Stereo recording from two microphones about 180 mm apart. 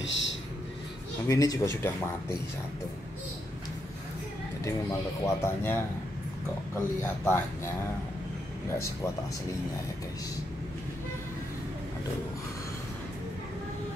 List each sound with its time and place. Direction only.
0.0 s a sound: 90° left
1.2 s speech: 20° left (ahead or behind)
5.2 s speech: 15° left (ahead or behind)